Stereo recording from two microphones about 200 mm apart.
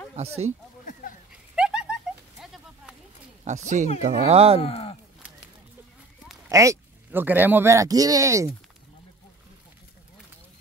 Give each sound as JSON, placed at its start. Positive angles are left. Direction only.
{"t": 0.1, "sound": "speech", "side_deg": -35}
{"t": 1.5, "sound": "a sound", "side_deg": -5}
{"t": 3.4, "sound": "speech", "side_deg": -35}
{"t": 4.6, "sound": "speech", "side_deg": 30}
{"t": 6.5, "sound": "speech", "side_deg": -15}